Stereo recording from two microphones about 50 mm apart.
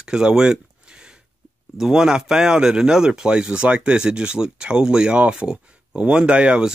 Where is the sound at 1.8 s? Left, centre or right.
Centre.